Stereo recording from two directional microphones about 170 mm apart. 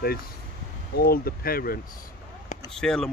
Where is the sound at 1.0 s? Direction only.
60° left (ahead or behind).